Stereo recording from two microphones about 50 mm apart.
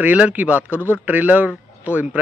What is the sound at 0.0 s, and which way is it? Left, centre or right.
Speech, right.